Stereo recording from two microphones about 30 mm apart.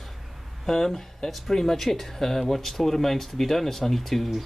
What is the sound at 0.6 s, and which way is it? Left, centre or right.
Speech, centre.